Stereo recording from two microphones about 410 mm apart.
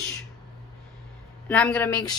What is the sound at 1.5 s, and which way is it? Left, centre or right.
Speech, centre.